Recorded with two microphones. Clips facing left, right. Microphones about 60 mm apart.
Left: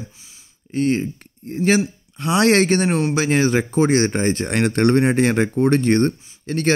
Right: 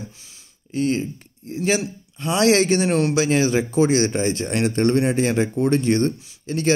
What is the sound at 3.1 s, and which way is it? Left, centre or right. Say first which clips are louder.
Speech: left 1 dB; left.